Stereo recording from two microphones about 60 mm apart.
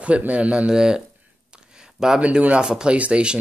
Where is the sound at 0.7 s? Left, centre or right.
Centre.